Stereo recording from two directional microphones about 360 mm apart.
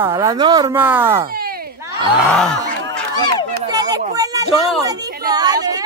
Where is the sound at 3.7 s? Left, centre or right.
Centre.